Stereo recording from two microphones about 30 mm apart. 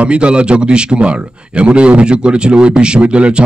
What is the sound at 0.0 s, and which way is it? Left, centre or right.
Speech, right.